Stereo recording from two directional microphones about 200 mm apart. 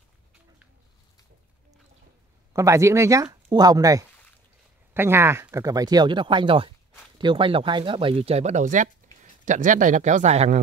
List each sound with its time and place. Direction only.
2.5 s speech: 15° right (ahead or behind); by 10.6 s 35° right (ahead or behind)